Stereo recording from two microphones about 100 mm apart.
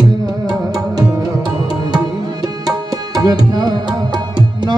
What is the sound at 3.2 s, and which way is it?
Tabla, 40° right (ahead or behind).